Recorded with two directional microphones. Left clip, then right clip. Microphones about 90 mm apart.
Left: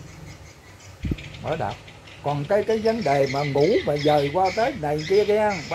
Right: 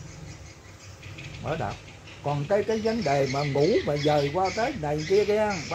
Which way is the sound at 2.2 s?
20° left (ahead or behind).